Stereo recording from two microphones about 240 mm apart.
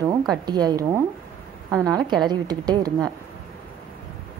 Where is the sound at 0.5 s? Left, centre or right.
Centre.